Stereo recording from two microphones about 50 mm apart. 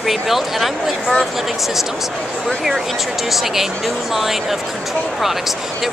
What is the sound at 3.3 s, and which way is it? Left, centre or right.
Speech, centre.